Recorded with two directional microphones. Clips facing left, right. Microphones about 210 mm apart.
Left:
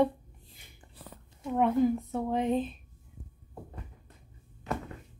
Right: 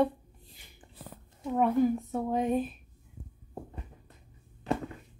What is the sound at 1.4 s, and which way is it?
Speech, centre (ahead or behind).